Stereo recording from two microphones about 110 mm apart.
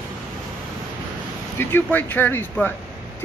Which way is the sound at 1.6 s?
20° left (ahead or behind).